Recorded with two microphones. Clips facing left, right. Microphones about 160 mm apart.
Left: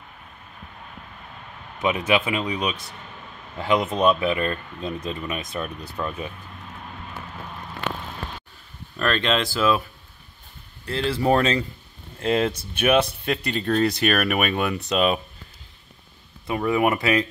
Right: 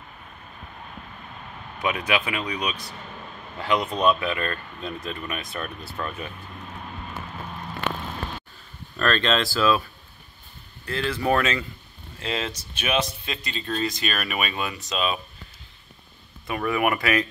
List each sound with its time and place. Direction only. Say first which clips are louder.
1.8 s speech: left 4 dB; 25° left (ahead or behind)
3.9 s speech: left 1 dB; centre (ahead or behind)
4.2 s speech: left 4 dB; 15° left (ahead or behind)
8.9 s speech: even; 15° left (ahead or behind)
10.9 s speech: left 3 dB; 30° left (ahead or behind)
12.2 s speech: left 8 dB; 50° left (ahead or behind)
16.4 s speech: left 3 dB; 25° left (ahead or behind)